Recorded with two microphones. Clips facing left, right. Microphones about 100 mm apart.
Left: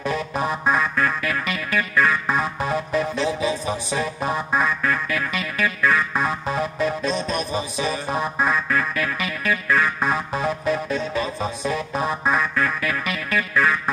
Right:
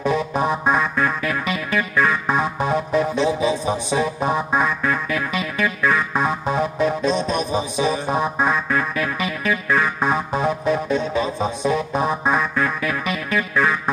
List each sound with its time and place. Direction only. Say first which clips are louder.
0.0 s music: right 4 dB; centre (ahead or behind)